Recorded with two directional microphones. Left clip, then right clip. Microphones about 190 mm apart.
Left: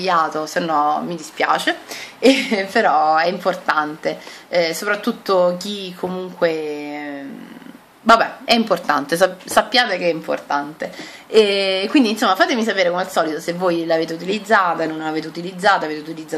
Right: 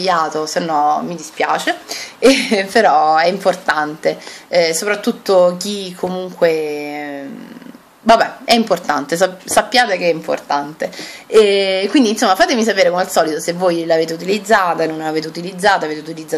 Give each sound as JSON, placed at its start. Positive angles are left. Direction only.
{"t": 0.0, "sound": "a woman's voice", "side_deg": -15}
{"t": 8.1, "sound": "a woman's voice", "side_deg": -10}